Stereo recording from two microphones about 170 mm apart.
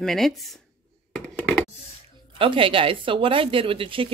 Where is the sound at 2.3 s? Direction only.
30° right (ahead or behind).